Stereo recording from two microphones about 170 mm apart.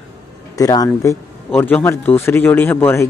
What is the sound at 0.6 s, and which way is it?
A man's voice, 20° left (ahead or behind).